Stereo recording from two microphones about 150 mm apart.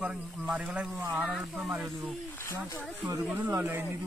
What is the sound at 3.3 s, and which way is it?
Speech, 10° right (ahead or behind).